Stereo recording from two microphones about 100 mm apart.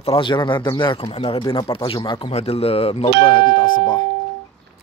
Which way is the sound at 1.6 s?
65° left (ahead or behind).